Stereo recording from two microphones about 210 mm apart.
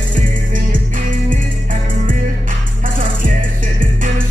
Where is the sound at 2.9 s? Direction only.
40° right (ahead or behind).